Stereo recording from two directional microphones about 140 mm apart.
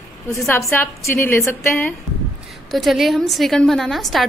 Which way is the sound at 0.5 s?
20° left (ahead or behind).